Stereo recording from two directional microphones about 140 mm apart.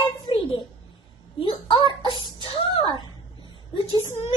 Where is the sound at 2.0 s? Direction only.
30° right (ahead or behind).